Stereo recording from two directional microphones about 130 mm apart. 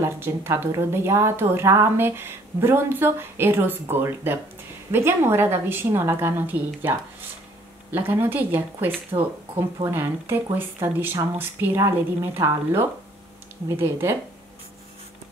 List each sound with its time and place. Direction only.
0.0 s a woman's voice: 20° right (ahead or behind)